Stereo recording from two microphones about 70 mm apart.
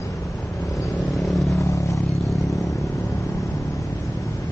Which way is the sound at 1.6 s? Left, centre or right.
Left.